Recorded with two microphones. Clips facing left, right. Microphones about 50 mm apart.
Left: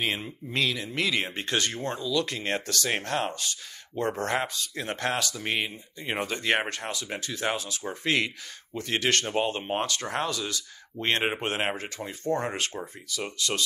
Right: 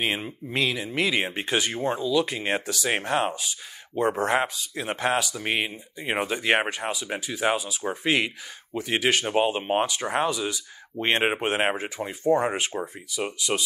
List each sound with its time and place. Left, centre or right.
0.0 s speech: centre